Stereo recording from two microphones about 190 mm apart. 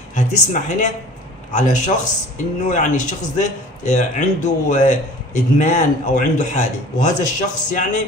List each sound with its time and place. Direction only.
0.1 s a man's voice: 40° left (ahead or behind)